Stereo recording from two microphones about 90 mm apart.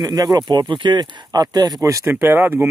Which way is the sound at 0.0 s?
45° right (ahead or behind).